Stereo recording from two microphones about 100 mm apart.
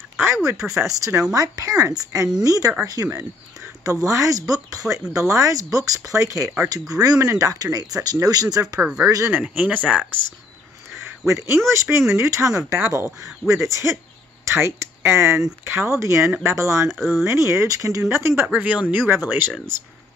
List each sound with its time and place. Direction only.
0.6 s speech: 5° right (ahead or behind)
0.9 s speech: 35° right (ahead or behind)
9.3 s speech: 15° right (ahead or behind)
11.0 s speech: 30° right (ahead or behind)
16.9 s speech: centre (ahead or behind)
17.2 s speech: 25° right (ahead or behind)
18.5 s speech: 10° right (ahead or behind)